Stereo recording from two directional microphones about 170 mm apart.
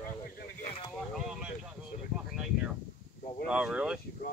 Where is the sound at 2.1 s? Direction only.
5° right (ahead or behind).